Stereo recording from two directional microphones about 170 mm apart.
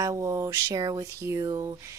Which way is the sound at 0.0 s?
20° right (ahead or behind).